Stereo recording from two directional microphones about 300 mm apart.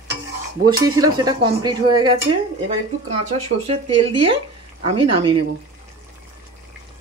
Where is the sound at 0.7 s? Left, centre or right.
Centre.